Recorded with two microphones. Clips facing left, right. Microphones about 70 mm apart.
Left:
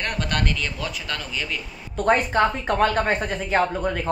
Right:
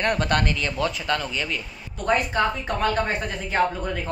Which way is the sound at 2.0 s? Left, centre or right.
Left.